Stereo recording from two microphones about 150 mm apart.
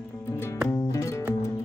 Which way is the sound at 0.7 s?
20° left (ahead or behind).